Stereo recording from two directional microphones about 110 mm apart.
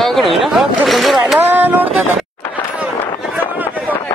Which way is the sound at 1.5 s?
15° right (ahead or behind).